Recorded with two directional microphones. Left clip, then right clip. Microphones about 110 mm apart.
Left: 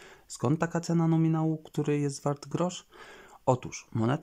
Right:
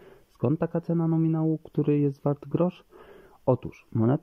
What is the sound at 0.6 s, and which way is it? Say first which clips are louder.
Speech: right 2 dB; 25° right (ahead or behind).